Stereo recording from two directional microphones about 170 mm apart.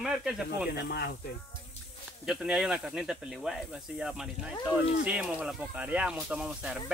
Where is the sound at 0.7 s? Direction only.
70° left (ahead or behind).